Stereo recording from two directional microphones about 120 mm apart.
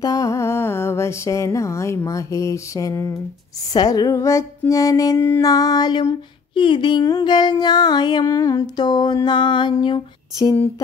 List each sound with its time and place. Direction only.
0.0 s a sound: 30° left (ahead or behind)
2.0 s speech: 25° left (ahead or behind)
5.4 s music: 30° left (ahead or behind)